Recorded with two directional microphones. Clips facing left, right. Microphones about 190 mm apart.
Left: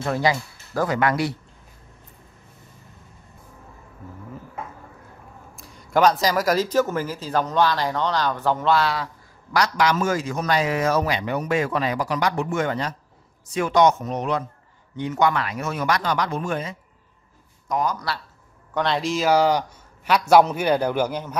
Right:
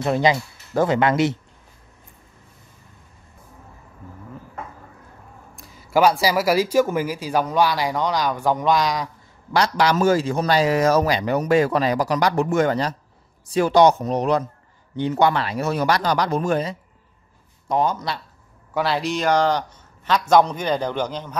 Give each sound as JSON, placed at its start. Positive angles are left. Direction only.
{"t": 0.0, "sound": "speech", "side_deg": -20}
{"t": 5.6, "sound": "speech", "side_deg": -5}
{"t": 9.5, "sound": "a man's voice", "side_deg": -30}
{"t": 18.7, "sound": "a man's voice", "side_deg": -5}